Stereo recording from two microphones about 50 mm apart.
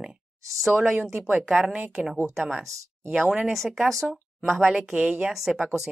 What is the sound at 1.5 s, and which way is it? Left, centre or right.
A woman's voice, centre.